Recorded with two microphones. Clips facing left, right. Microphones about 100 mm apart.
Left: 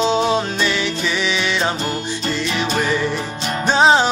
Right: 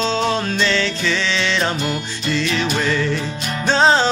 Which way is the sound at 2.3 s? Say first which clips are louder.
Right 2 dB; 15° left (ahead or behind).